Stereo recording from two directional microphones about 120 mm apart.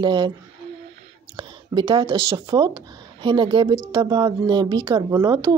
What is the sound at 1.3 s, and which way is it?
Speech, 40° right (ahead or behind).